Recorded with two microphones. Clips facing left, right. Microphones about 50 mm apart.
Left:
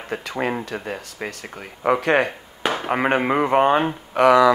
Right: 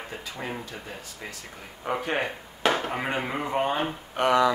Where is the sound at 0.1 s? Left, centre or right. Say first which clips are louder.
Left 13 dB; left.